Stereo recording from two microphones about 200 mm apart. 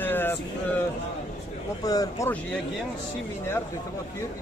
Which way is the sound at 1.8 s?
20° left (ahead or behind).